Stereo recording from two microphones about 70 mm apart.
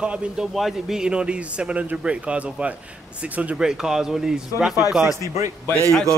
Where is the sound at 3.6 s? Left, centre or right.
Centre.